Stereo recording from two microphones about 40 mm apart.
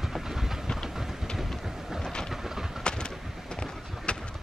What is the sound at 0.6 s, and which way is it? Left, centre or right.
Train, centre.